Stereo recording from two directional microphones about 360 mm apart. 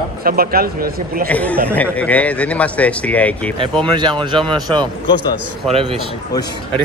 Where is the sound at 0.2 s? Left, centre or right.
Right.